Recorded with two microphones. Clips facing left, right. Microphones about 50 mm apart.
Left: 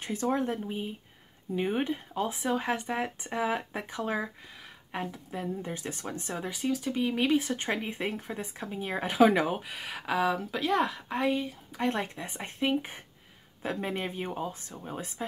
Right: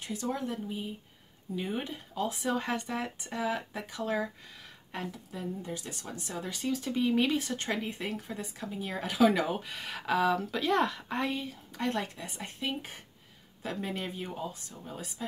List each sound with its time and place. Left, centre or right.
0.0 s a woman's voice: left; by 5.1 s centre
5.3 s speech: left
6.5 s speech: centre; by 9.6 s left
9.6 s a woman's voice: centre
11.8 s speech: left